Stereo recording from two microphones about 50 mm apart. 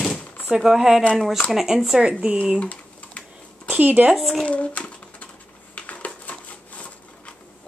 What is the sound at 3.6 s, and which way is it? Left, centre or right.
Speech, right.